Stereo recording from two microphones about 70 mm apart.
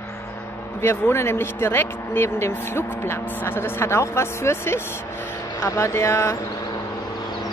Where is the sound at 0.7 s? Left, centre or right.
Left.